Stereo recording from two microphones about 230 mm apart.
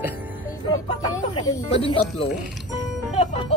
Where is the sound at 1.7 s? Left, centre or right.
Left.